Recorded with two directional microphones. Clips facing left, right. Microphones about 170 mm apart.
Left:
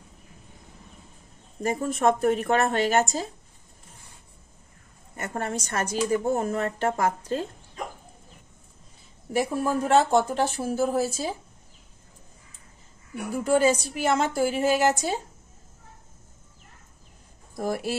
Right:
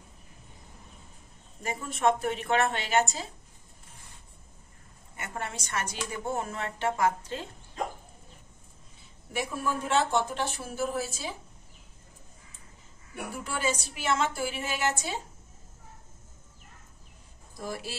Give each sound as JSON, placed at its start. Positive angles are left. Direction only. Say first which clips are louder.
{"t": 1.6, "sound": "a woman's voice", "louder": "left 5 dB", "side_deg": 45}
{"t": 5.1, "sound": "a woman's voice", "louder": "left 7 dB", "side_deg": 40}
{"t": 9.3, "sound": "speech", "louder": "left 7 dB", "side_deg": 40}
{"t": 13.4, "sound": "a woman's voice", "louder": "left 11 dB", "side_deg": 45}
{"t": 17.6, "sound": "a woman's voice", "louder": "left 9 dB", "side_deg": 50}